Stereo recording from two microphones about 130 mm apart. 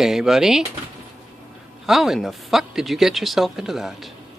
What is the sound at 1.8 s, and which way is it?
Speech, 5° right (ahead or behind).